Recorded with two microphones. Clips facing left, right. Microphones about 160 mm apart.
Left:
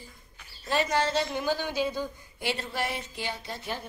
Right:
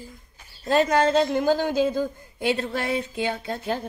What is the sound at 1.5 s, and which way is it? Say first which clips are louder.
A woman's voice: right 7 dB; 50° right (ahead or behind).